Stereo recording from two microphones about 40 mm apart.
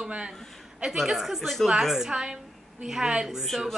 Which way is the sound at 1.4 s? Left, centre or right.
Centre.